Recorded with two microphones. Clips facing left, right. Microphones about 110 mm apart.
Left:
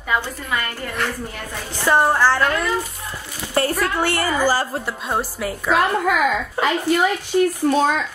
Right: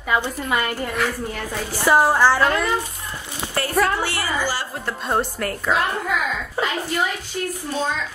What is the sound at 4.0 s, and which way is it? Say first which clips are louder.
Speech: left 5 dB; 50° left (ahead or behind).